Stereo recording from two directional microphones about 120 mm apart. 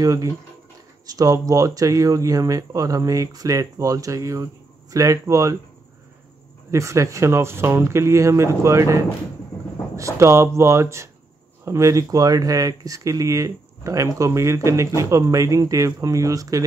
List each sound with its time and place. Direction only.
0.0 s speech: 30° right (ahead or behind)
6.7 s speech: 25° right (ahead or behind)